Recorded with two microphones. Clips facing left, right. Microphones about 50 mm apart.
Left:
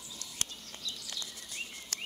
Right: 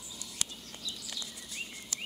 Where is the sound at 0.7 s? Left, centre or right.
Centre.